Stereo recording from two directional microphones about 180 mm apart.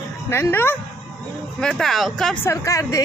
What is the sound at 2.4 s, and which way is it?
Speech, 20° left (ahead or behind).